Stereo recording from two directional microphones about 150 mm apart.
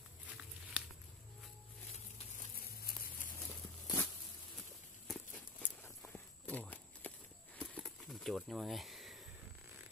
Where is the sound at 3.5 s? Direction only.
20° left (ahead or behind).